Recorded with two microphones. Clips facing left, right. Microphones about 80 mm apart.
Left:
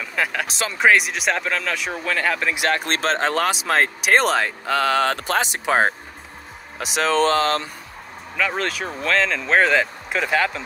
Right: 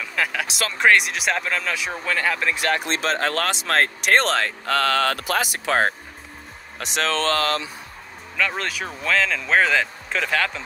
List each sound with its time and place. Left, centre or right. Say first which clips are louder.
0.0 s a sound: left 1 dB; centre
0.7 s speech: left 1 dB; centre
2.7 s speech: left 1 dB; left
3.2 s speech: left 2 dB; left
3.4 s speech: left 2 dB; centre; by 5.6 s left
5.7 s speech: left 2 dB; centre
8.4 s speech: left 2 dB; centre